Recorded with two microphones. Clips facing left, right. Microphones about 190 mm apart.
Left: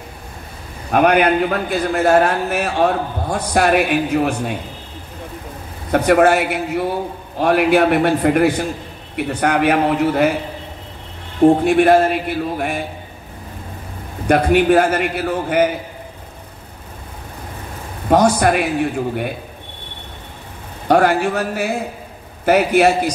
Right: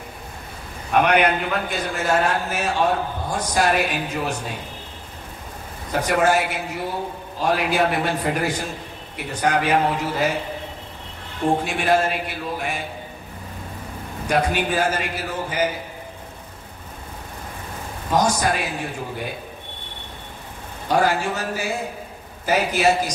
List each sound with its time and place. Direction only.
0.9 s a man's voice: 55° left (ahead or behind)
5.9 s a man's voice: 60° left (ahead or behind)
11.4 s a man's voice: 55° left (ahead or behind)
14.2 s a man's voice: 60° left (ahead or behind)
18.1 s a man's voice: 60° left (ahead or behind)
20.9 s a man's voice: 60° left (ahead or behind)